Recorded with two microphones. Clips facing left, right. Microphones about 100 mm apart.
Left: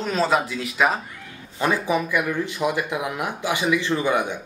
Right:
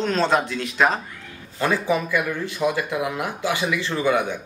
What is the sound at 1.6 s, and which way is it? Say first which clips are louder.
Speech: even; 15° left (ahead or behind).